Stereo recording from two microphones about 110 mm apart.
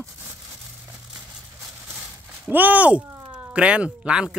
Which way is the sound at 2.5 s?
15° right (ahead or behind).